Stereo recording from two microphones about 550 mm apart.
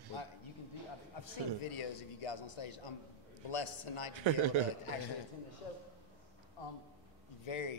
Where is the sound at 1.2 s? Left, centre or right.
Left.